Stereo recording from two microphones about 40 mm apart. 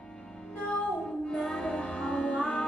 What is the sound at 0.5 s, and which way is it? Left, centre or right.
Music, left.